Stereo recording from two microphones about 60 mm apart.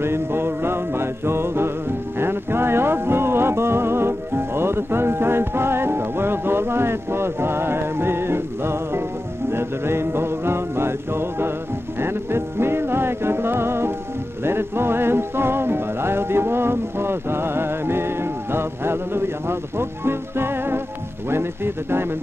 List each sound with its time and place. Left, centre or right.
0.0 s music: right